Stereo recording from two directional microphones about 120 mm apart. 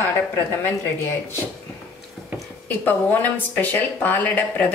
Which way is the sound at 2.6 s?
15° left (ahead or behind).